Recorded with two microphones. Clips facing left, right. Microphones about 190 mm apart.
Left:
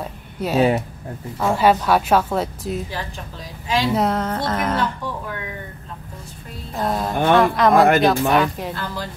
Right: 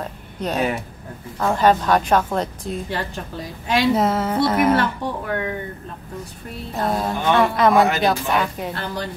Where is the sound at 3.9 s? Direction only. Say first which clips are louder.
Right 1 dB; centre (ahead or behind).